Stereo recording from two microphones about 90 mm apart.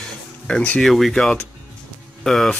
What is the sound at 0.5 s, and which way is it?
Speech, 10° left (ahead or behind).